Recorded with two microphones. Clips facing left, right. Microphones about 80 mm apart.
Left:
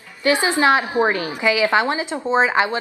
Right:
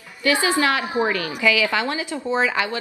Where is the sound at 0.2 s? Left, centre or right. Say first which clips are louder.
Left 2 dB; left.